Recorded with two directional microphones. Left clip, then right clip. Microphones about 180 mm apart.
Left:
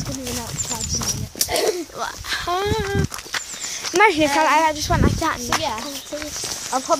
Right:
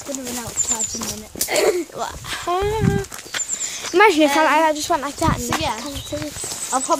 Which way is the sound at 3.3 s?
40° left (ahead or behind).